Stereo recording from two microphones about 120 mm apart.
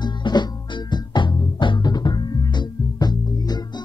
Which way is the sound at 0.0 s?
40° left (ahead or behind).